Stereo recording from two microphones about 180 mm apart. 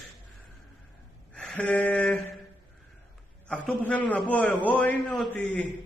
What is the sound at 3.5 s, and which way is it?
A man's voice, 10° left (ahead or behind).